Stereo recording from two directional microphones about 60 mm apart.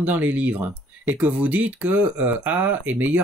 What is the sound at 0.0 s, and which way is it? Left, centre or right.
Speech, right.